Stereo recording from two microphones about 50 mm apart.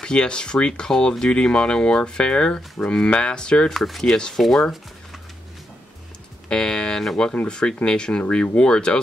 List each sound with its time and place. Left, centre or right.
0.0 s speech: centre
3.7 s speech: centre
4.0 s speech: centre
6.5 s a sound: centre
7.4 s speech: centre